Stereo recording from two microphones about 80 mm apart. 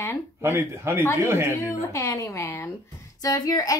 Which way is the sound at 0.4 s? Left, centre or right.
Right.